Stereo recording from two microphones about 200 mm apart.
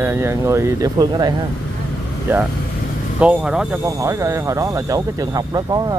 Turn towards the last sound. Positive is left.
turn(degrees=-20)  # may be behind; listen again after turning